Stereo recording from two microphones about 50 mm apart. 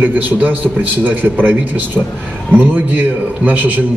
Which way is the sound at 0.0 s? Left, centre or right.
Right.